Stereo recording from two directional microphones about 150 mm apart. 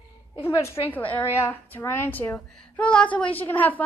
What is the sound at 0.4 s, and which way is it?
A woman's voice, 20° left (ahead or behind).